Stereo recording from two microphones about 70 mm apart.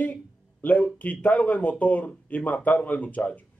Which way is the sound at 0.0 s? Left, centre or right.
Left.